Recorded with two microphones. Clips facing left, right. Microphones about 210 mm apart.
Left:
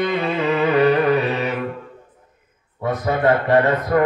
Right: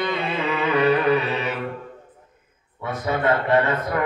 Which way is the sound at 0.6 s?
40° left (ahead or behind).